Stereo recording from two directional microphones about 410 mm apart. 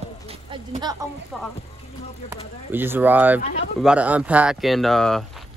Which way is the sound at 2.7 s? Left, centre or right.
Centre.